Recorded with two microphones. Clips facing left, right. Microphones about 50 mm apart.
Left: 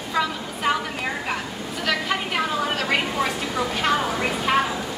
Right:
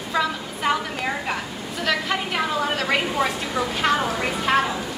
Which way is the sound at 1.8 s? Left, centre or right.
Centre.